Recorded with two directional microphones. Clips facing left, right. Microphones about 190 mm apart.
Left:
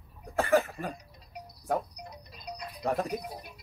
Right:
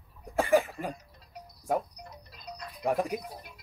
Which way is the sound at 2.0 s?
15° left (ahead or behind).